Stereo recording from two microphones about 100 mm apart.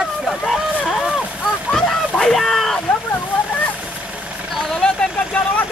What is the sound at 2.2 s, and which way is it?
Speech, centre (ahead or behind).